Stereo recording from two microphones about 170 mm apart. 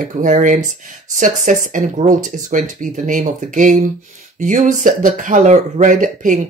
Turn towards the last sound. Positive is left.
turn(degrees=-50)  # may be behind; listen again after turning